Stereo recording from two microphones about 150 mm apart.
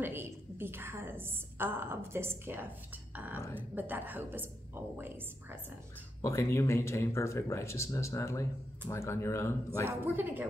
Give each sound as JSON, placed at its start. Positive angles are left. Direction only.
{"t": 0.0, "sound": "a sound", "side_deg": -15}
{"t": 3.5, "sound": "a woman's voice", "side_deg": -10}
{"t": 6.2, "sound": "speech", "side_deg": 20}
{"t": 9.8, "sound": "a woman's voice", "side_deg": -15}